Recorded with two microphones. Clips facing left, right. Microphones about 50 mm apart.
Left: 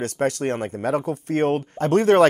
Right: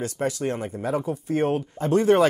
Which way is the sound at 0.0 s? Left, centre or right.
Left.